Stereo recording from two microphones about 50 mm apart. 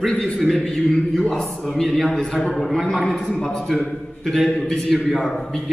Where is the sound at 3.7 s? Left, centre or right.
Centre.